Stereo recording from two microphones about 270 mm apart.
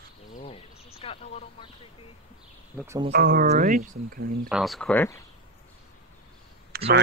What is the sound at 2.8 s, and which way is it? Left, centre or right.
Speech, centre.